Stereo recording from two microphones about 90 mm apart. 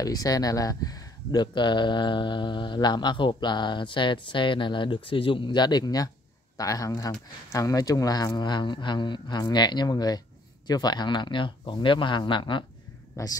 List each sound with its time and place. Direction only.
0.0 s speech: 45° left (ahead or behind)
8.4 s speech: 55° left (ahead or behind)
13.2 s speech: 35° left (ahead or behind)